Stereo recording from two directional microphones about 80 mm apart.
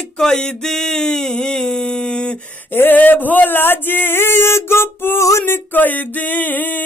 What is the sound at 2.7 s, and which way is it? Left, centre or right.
Speech, left.